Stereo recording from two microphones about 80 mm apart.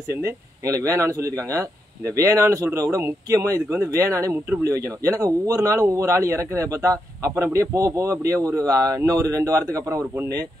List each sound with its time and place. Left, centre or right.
0.1 s a man's voice: right